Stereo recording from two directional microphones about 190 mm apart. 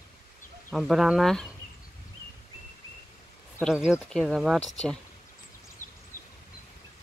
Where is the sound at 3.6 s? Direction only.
5° right (ahead or behind).